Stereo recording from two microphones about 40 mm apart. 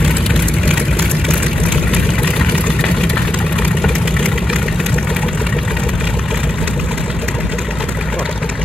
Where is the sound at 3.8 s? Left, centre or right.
Centre.